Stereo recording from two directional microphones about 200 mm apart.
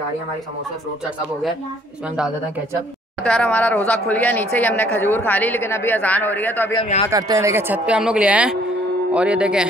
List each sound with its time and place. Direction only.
3.3 s a woman's voice: 5° left (ahead or behind)
6.8 s speech: 30° left (ahead or behind)
7.1 s a man's voice: 15° right (ahead or behind)